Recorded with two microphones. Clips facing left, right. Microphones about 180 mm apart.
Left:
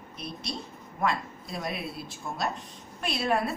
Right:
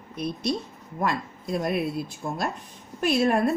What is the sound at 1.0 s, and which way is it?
A woman's voice, 50° right (ahead or behind).